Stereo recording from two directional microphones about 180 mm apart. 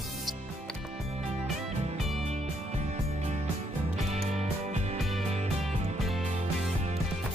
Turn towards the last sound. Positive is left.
turn(degrees=0)  # may be behind; listen again after turning